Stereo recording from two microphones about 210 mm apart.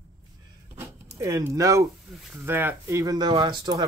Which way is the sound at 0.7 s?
15° right (ahead or behind).